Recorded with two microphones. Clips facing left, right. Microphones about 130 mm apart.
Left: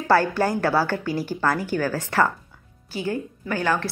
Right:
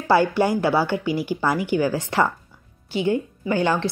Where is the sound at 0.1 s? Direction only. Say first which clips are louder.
Right 2 dB; 15° right (ahead or behind).